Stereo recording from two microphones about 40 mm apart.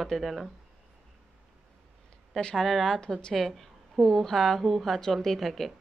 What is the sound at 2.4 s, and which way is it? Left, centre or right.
Speech, centre.